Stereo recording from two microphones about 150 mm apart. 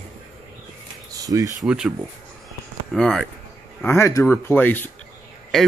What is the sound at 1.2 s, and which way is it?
Speech, 25° right (ahead or behind).